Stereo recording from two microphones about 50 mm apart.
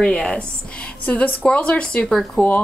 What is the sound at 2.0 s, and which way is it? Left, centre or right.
Speech, centre.